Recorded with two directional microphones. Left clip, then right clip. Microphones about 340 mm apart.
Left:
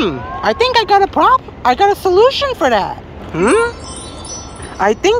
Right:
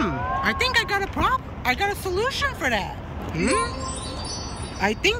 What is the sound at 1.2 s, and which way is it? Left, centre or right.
Speech, left.